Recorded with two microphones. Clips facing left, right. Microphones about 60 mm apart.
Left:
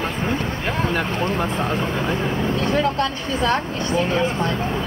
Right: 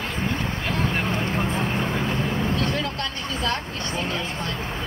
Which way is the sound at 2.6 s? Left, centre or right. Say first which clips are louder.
Left 6 dB; left.